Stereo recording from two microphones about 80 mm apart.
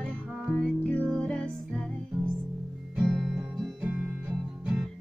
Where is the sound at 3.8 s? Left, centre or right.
Centre.